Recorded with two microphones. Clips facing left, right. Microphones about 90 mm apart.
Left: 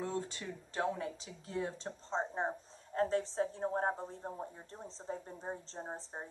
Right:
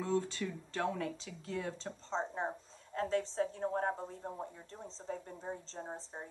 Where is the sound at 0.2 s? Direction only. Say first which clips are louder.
Right 3 dB; 25° left (ahead or behind).